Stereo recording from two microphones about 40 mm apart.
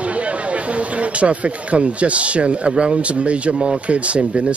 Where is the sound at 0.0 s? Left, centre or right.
Right.